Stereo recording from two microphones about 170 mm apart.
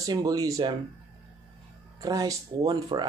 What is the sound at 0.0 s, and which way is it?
Speech, 20° right (ahead or behind).